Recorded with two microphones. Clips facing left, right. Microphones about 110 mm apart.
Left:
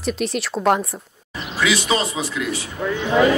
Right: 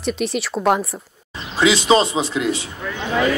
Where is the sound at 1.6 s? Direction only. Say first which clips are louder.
Right 5 dB; 25° right (ahead or behind).